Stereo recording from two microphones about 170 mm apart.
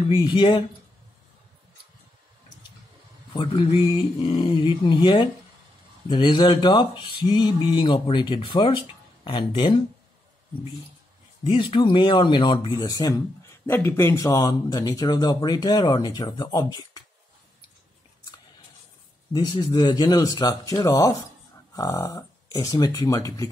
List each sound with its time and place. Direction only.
0.0 s speech: 25° left (ahead or behind)
3.3 s speech: 30° left (ahead or behind)
11.4 s speech: 30° left (ahead or behind)
19.3 s speech: 25° left (ahead or behind)